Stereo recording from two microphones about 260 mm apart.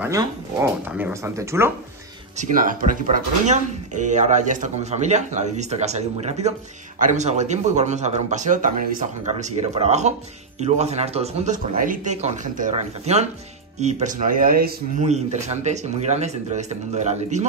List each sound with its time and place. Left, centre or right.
0.0 s speech: centre
2.3 s speech: right